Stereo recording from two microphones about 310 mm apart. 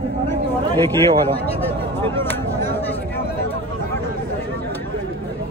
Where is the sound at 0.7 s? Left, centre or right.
Centre.